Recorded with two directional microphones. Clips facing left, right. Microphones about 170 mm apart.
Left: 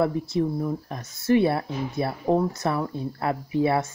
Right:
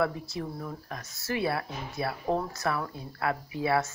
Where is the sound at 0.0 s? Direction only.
20° left (ahead or behind).